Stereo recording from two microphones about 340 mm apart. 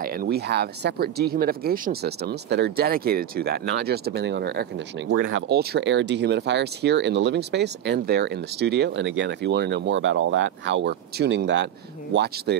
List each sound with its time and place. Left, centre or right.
0.0 s speech: right